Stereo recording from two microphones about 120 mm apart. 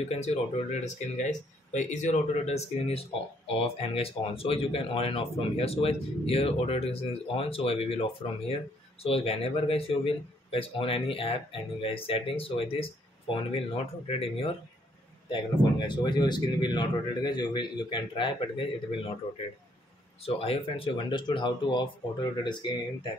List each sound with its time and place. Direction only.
0.1 s speech: 65° left (ahead or behind); by 19.1 s 45° left (ahead or behind)
20.2 s speech: 55° left (ahead or behind); by 22.7 s 40° left (ahead or behind)